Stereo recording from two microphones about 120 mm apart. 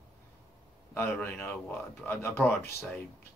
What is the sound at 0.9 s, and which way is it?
A man's voice, 15° left (ahead or behind).